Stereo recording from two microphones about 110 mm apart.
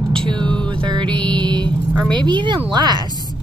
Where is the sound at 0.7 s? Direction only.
45° right (ahead or behind).